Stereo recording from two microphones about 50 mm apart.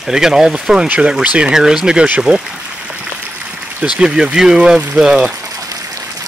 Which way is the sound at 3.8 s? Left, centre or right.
Centre.